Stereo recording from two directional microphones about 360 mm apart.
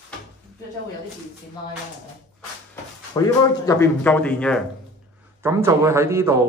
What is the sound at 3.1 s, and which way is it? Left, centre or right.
Speech, centre.